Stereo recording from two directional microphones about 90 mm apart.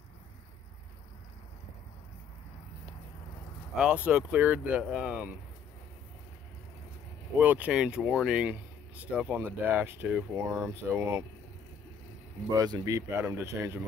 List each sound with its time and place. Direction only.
3.7 s speech: 10° right (ahead or behind)
7.3 s speech: 20° right (ahead or behind)
8.5 s speech: 15° right (ahead or behind)
12.4 s speech: 45° right (ahead or behind)
13.1 s speech: 25° right (ahead or behind)